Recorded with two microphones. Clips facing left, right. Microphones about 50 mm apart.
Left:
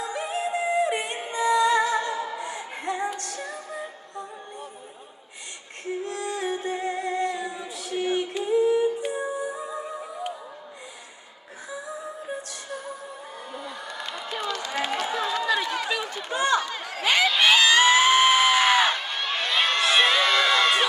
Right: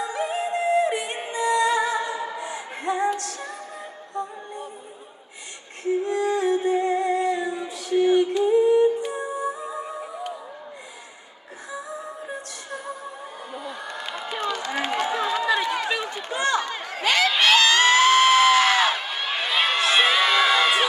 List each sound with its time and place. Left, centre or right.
0.0 s music: centre
6.0 s music: centre
6.3 s music: centre
8.0 s female singing: centre
8.5 s music: centre
13.5 s a sound: centre
14.7 s run: centre
15.0 s run: right
15.3 s run: centre
16.3 s chatter: centre
17.0 s crowd: centre
18.9 s a sound: centre